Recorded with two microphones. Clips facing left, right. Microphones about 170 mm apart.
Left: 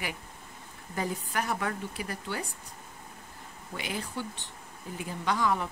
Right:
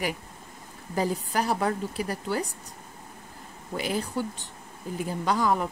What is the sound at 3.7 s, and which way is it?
Speech, 40° right (ahead or behind).